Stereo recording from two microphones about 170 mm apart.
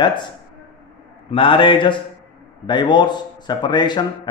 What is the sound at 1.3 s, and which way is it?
Speech, 30° left (ahead or behind).